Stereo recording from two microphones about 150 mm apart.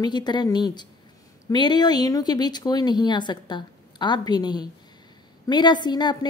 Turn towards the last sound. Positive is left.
turn(degrees=30)  # may be behind; listen again after turning